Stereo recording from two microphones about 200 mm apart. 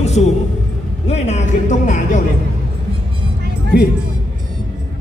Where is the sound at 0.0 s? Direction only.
35° left (ahead or behind).